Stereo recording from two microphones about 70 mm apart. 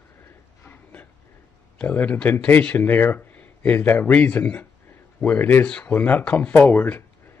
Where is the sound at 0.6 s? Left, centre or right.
Left.